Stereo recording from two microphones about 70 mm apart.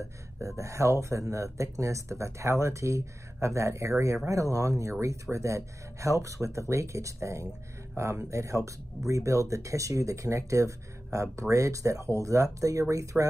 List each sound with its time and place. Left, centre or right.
0.6 s speech: right